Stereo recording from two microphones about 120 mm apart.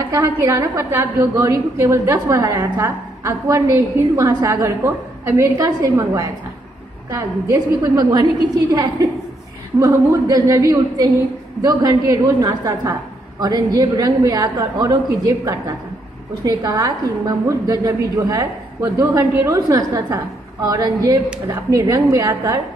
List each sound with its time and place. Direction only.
0.1 s a woman's voice: 25° right (ahead or behind)